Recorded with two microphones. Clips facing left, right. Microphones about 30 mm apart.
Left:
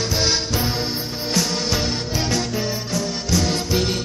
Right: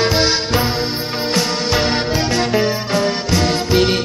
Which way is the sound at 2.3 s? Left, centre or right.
Right.